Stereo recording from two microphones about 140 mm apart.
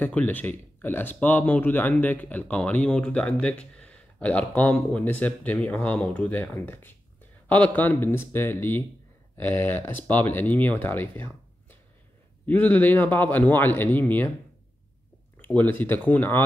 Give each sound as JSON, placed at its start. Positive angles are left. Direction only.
{"t": 0.0, "sound": "speech", "side_deg": 10}
{"t": 12.4, "sound": "speech", "side_deg": 10}
{"t": 15.3, "sound": "speech", "side_deg": 10}